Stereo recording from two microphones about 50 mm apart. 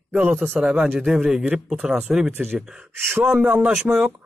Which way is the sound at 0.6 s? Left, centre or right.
Centre.